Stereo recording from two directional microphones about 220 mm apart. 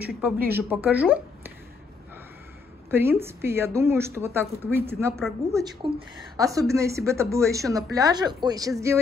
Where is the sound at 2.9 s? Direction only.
10° right (ahead or behind).